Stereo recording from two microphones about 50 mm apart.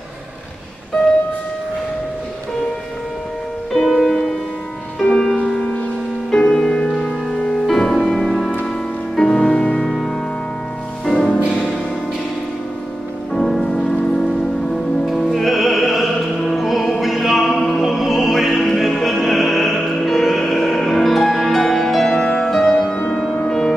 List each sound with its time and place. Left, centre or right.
3.7 s music: centre
5.6 s music: left
6.3 s music: centre
9.8 s music: centre
13.3 s music: centre
22.1 s music: centre
22.4 s music: centre